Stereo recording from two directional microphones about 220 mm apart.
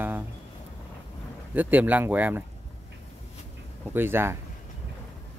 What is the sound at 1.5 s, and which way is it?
Speech, 10° right (ahead or behind).